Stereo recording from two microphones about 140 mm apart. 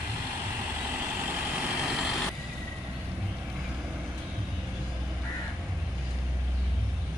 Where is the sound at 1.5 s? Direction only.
10° right (ahead or behind).